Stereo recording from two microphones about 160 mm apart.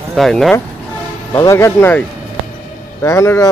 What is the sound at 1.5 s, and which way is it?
Speech, 15° left (ahead or behind).